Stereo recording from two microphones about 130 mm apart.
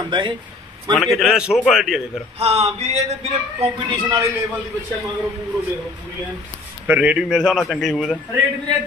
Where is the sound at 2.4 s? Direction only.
50° right (ahead or behind).